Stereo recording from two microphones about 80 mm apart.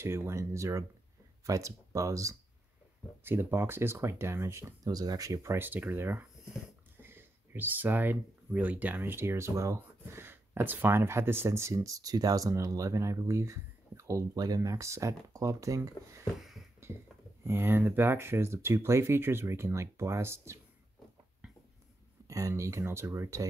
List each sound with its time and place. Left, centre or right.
0.0 s speech: right
3.3 s speech: right
4.8 s speech: right
14.3 s speech: right
16.3 s a sound: centre
17.5 s speech: right
22.3 s speech: right